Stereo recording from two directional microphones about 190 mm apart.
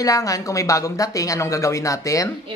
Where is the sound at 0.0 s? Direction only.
15° left (ahead or behind).